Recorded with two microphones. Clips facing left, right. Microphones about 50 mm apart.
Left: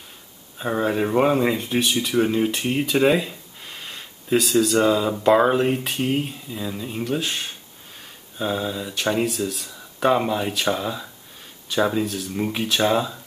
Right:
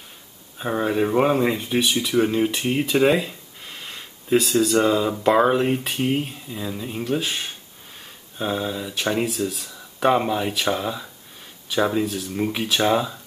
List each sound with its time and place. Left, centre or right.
0.6 s speech: centre